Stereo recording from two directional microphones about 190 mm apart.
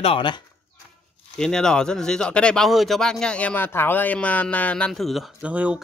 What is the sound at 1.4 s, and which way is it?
Speech, 5° left (ahead or behind).